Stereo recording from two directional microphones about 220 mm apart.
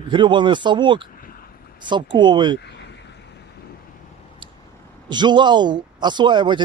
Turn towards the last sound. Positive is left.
turn(degrees=-20)  # may be behind; listen again after turning